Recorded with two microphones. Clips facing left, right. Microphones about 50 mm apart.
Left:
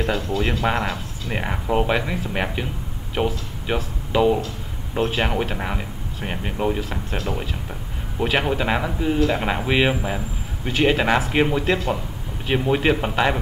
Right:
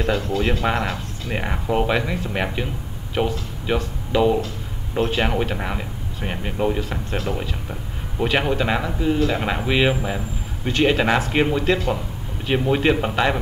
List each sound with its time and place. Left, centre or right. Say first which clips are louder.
0.0 s speech: right 1 dB; centre